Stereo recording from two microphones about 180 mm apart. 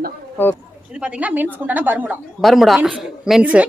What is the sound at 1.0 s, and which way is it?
Speech, 10° right (ahead or behind).